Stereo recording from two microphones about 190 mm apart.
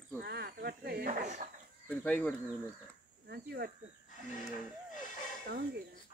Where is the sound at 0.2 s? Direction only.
55° right (ahead or behind); by 1.5 s 40° right (ahead or behind).